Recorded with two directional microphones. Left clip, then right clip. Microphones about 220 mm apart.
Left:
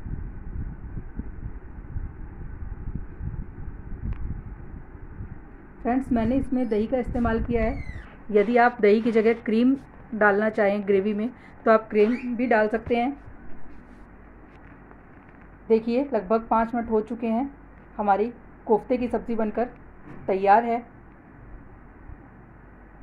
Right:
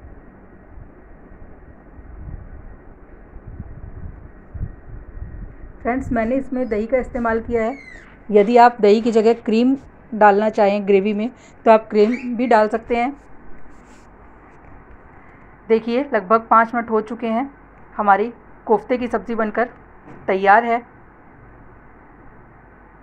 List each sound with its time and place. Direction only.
5.8 s a sound: 5° right (ahead or behind)
6.0 s a woman's voice: centre (ahead or behind); by 12.7 s 20° right (ahead or behind)
12.7 s a woman's voice: centre (ahead or behind)
15.7 s a woman's voice: 5° right (ahead or behind)
16.9 s speech: 30° right (ahead or behind)
17.2 s a woman's voice: 5° right (ahead or behind)